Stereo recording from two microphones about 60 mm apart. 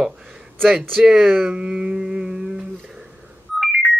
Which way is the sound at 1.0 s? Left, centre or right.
Centre.